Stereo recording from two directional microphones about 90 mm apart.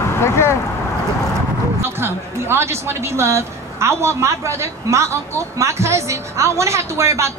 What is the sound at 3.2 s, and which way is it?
A woman's voice, 30° right (ahead or behind).